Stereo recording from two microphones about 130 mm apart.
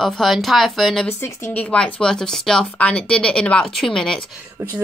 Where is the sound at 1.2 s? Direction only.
15° left (ahead or behind).